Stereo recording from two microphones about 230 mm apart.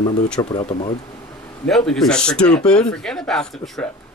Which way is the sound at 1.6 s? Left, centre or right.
Centre.